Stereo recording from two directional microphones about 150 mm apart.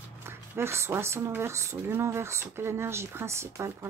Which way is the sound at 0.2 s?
15° right (ahead or behind).